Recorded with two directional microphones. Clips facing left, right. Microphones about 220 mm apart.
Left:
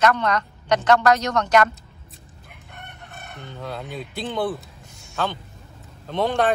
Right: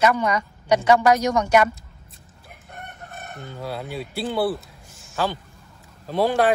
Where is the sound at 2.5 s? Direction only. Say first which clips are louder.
Right 3 dB; 45° right (ahead or behind).